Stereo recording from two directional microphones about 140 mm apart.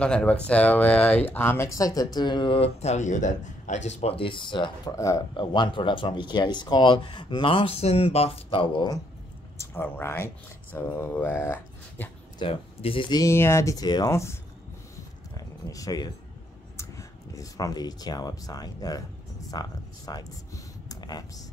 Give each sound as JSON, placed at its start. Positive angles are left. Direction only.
{"t": 0.0, "sound": "speech", "side_deg": 10}
{"t": 4.9, "sound": "speech", "side_deg": 25}
{"t": 5.3, "sound": "speech", "side_deg": 35}
{"t": 9.6, "sound": "speech", "side_deg": 15}
{"t": 12.4, "sound": "speech", "side_deg": 40}
{"t": 13.2, "sound": "speech", "side_deg": 20}
{"t": 15.3, "sound": "a sound", "side_deg": 25}
{"t": 16.7, "sound": "speech", "side_deg": 25}